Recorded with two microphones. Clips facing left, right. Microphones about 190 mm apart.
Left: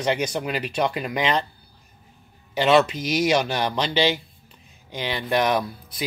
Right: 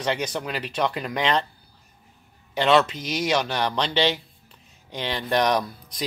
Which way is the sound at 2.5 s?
10° left (ahead or behind).